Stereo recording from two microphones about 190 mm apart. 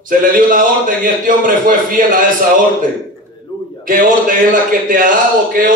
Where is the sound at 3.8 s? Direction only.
45° right (ahead or behind).